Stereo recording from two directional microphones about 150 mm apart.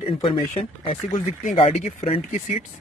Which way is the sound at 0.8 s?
55° left (ahead or behind).